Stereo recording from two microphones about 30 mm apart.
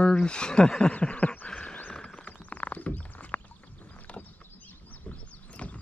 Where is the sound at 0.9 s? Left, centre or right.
Left.